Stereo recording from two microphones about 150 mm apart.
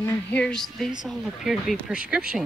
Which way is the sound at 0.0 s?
10° left (ahead or behind).